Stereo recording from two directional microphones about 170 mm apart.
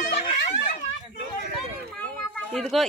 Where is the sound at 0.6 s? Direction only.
50° left (ahead or behind).